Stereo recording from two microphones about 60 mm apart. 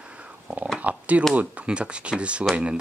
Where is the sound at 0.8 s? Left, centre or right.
Right.